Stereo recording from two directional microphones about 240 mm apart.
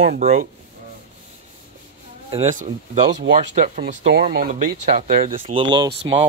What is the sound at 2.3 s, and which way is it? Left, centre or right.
Speech, right.